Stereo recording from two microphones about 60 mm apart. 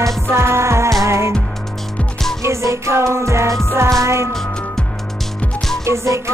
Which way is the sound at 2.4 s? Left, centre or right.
Right.